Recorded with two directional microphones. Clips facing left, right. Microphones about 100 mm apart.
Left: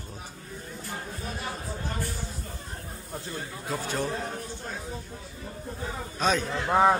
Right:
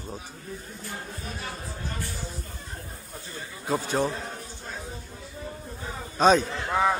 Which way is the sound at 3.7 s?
25° right (ahead or behind).